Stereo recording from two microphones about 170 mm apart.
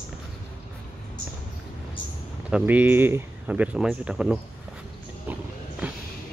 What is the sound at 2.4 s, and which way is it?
Speech, 5° right (ahead or behind).